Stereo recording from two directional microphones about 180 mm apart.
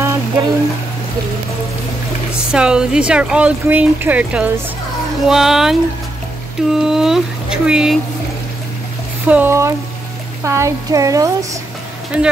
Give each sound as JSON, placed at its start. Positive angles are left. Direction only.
{"t": 0.0, "sound": "music", "side_deg": -15}
{"t": 2.3, "sound": "speech", "side_deg": -5}
{"t": 9.3, "sound": "speech", "side_deg": -15}